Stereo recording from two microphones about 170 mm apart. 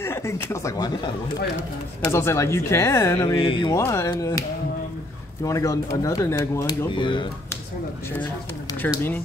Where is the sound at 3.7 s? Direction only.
15° left (ahead or behind).